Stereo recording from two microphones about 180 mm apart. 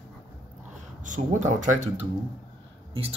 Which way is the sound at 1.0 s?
45° right (ahead or behind).